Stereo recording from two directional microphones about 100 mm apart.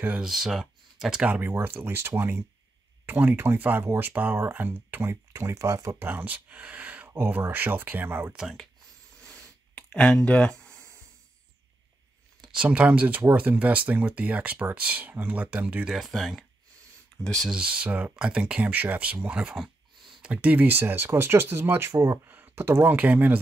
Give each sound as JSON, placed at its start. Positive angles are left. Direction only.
{"t": 0.2, "sound": "speech", "side_deg": -5}
{"t": 1.3, "sound": "speech", "side_deg": -20}
{"t": 6.0, "sound": "speech", "side_deg": -20}
{"t": 8.4, "sound": "speech", "side_deg": -5}
{"t": 9.2, "sound": "a sound", "side_deg": 10}
{"t": 10.7, "sound": "a sound", "side_deg": -30}
{"t": 12.5, "sound": "speech", "side_deg": -15}
{"t": 15.9, "sound": "speech", "side_deg": 0}
{"t": 17.5, "sound": "speech", "side_deg": -10}